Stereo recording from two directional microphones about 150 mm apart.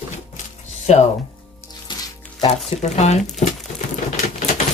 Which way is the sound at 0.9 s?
50° left (ahead or behind).